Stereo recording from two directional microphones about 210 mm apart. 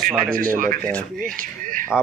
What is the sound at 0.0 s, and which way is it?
Speech, 40° right (ahead or behind).